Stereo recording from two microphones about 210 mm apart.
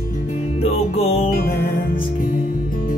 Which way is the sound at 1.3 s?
50° left (ahead or behind).